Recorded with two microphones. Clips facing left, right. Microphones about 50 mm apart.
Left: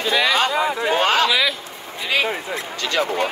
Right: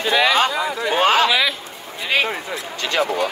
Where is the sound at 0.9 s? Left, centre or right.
Centre.